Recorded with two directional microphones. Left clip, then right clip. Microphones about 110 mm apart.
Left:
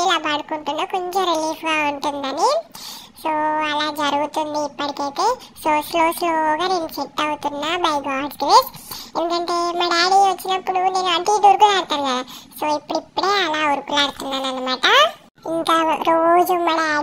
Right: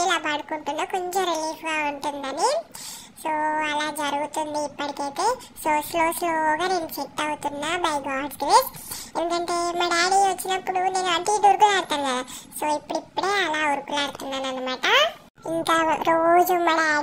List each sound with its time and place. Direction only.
0.0 s a woman's voice: 10° left (ahead or behind)
1.3 s a child's voice: 40° left (ahead or behind); by 4.0 s 15° left (ahead or behind)
4.0 s a child's voice: 35° left (ahead or behind)
4.3 s a child's voice: 15° left (ahead or behind)
15.6 s a child's voice: 10° left (ahead or behind)